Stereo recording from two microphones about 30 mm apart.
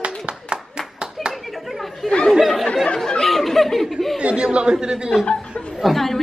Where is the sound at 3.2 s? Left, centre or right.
Centre.